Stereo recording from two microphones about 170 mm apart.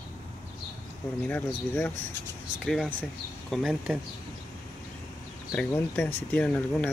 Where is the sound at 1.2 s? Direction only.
10° left (ahead or behind).